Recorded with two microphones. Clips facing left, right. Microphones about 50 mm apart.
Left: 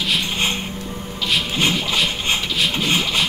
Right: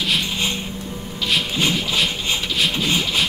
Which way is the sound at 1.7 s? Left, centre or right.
Centre.